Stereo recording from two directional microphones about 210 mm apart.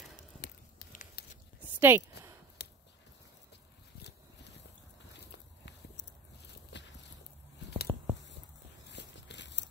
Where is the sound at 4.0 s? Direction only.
55° left (ahead or behind).